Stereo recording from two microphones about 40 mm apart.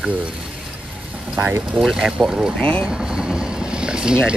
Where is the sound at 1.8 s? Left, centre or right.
Centre.